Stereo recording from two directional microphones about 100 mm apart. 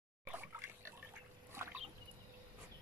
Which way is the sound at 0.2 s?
20° right (ahead or behind).